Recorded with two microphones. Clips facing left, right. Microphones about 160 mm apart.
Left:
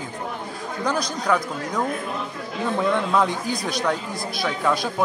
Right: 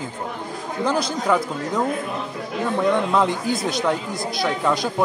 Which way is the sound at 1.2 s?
5° right (ahead or behind).